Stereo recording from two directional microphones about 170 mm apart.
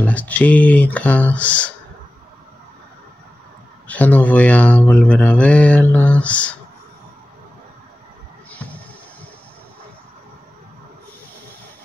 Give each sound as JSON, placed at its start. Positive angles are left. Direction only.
{"t": 0.0, "sound": "mantra", "side_deg": 10}
{"t": 3.8, "sound": "mantra", "side_deg": 10}
{"t": 8.5, "sound": "music", "side_deg": 10}